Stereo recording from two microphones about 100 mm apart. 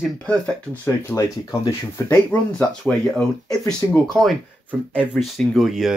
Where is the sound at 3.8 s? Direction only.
25° left (ahead or behind).